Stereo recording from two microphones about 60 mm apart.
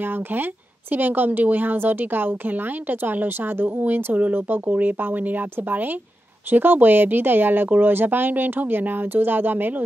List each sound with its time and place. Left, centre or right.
0.0 s speech: right